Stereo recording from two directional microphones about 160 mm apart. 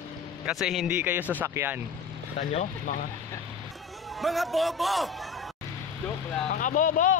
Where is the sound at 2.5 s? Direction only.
45° left (ahead or behind).